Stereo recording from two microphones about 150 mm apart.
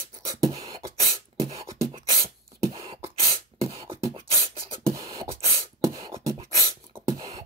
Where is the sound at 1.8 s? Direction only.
40° right (ahead or behind).